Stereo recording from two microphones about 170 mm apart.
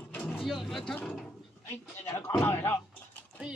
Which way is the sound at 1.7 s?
15° left (ahead or behind).